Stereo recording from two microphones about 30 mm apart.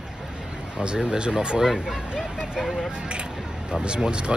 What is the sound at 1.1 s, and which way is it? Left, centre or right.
Speech, right.